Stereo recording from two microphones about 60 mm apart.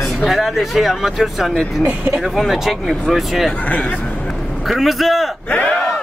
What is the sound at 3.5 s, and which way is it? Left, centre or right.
Speech, left.